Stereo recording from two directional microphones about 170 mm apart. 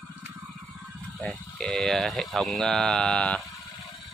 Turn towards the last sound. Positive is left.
turn(degrees=5)  # may be behind; listen again after turning